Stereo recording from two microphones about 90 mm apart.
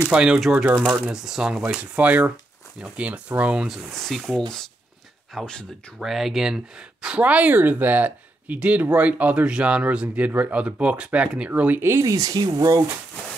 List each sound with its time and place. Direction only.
0.1 s speech: 10° right (ahead or behind)
3.6 s speech: centre (ahead or behind)
5.9 s speech: 5° right (ahead or behind)
11.8 s speech: 35° right (ahead or behind)